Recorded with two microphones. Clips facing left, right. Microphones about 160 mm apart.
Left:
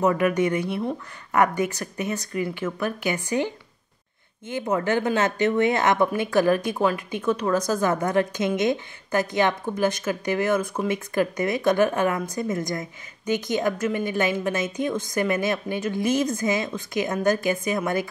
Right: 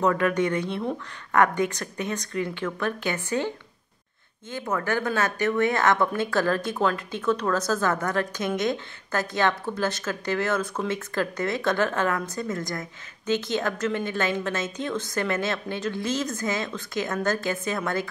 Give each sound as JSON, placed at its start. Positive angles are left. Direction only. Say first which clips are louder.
{"t": 0.0, "sound": "speech", "louder": "left 2 dB", "side_deg": 10}